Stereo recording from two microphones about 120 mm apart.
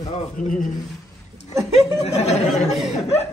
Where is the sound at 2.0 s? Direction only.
60° left (ahead or behind).